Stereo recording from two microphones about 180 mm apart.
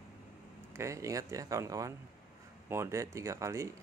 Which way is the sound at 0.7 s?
15° right (ahead or behind).